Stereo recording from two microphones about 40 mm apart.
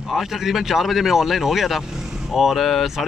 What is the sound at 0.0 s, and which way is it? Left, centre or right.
Speech, centre.